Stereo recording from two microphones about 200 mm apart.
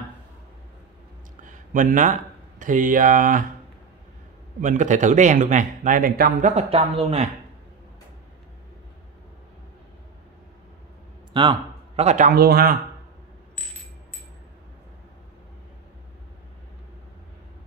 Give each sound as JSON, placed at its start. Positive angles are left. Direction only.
{"t": 1.5, "sound": "speech", "side_deg": -40}
{"t": 4.6, "sound": "speech", "side_deg": -40}
{"t": 6.5, "sound": "speech", "side_deg": -30}
{"t": 11.3, "sound": "a man's voice", "side_deg": -25}
{"t": 12.3, "sound": "a man's voice", "side_deg": -50}